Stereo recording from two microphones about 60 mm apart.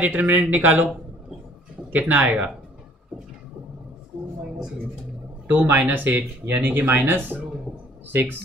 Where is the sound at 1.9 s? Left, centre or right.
Right.